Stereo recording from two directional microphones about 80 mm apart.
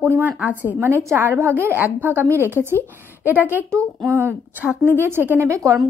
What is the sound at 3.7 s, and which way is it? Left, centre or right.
A woman's voice, right.